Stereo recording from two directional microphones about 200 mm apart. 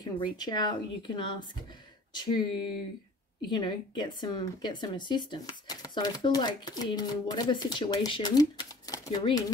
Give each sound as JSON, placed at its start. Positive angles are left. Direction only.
{"t": 0.0, "sound": "speech", "side_deg": 20}